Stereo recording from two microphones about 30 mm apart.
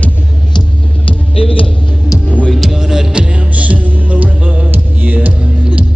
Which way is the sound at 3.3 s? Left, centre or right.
Right.